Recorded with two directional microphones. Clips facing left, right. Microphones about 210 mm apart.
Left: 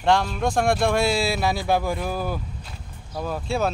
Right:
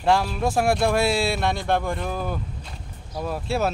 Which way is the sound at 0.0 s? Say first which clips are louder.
Even; 5° right (ahead or behind).